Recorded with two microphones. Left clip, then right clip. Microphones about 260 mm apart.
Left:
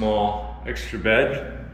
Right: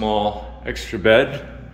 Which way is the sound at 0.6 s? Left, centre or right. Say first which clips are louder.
Right 6 dB; centre.